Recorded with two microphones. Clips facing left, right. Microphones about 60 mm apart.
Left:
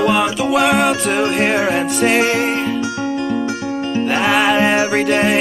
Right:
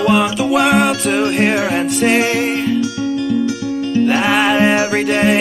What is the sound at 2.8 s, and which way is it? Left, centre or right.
Music, left.